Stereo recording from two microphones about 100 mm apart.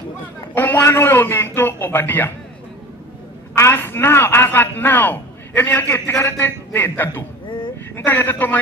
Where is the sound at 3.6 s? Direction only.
25° left (ahead or behind).